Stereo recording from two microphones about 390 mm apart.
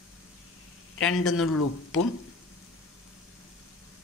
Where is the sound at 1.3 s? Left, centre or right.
Left.